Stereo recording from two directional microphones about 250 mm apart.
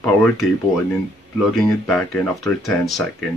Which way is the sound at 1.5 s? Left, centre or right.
Centre.